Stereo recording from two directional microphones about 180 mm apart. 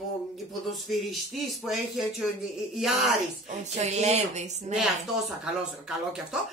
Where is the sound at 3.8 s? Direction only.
40° right (ahead or behind).